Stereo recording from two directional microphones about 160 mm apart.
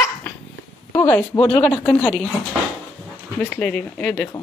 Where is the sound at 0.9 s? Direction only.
10° left (ahead or behind).